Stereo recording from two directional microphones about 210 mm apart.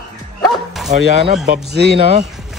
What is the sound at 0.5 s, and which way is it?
Bow-wow, centre (ahead or behind).